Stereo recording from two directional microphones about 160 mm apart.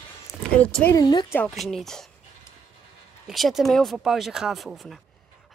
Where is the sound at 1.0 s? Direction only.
25° left (ahead or behind).